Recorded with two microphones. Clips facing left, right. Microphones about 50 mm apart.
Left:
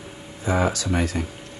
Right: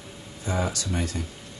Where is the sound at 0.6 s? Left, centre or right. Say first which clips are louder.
Left 5 dB; left.